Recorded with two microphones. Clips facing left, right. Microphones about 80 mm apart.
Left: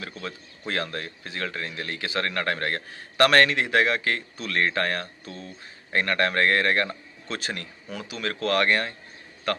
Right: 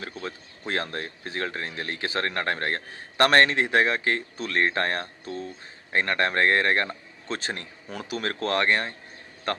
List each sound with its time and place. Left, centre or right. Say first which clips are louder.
0.0 s speech: right 1 dB; right
5.9 s speech: even; right
8.5 s speech: left 2 dB; right